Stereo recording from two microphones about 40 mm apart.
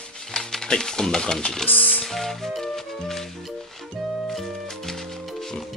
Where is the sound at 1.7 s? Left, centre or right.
Left.